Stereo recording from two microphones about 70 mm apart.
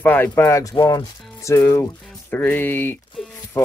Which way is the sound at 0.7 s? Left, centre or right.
Left.